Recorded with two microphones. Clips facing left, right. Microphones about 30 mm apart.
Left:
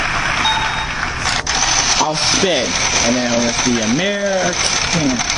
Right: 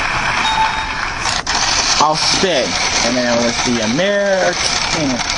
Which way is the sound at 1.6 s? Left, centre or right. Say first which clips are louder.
Even; right.